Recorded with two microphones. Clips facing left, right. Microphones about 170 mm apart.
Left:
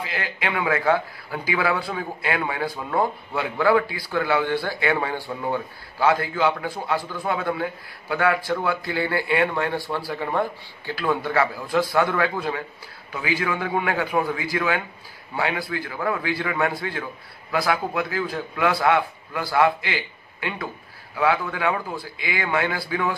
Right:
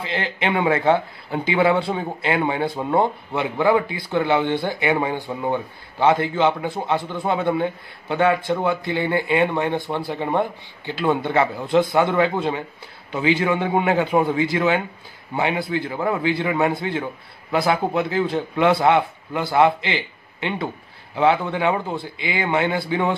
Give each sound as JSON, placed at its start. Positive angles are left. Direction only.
{"t": 0.0, "sound": "speech", "side_deg": -25}